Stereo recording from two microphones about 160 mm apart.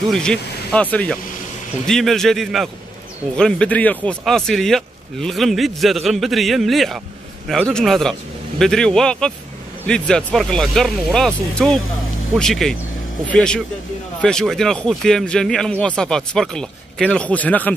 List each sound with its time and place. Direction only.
0.1 s speech: 5° left (ahead or behind)